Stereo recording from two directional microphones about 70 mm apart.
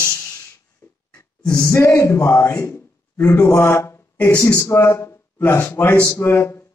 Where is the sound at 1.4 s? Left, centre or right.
Centre.